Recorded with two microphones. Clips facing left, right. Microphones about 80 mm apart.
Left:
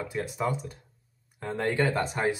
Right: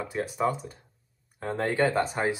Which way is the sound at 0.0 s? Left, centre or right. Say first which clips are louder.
Right 2 dB; centre.